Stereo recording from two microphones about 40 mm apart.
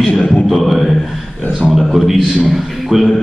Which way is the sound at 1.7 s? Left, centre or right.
Centre.